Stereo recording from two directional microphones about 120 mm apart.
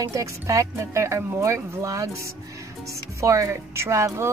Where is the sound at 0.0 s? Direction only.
25° right (ahead or behind).